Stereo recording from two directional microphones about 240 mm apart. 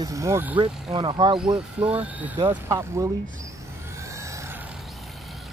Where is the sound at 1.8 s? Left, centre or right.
Centre.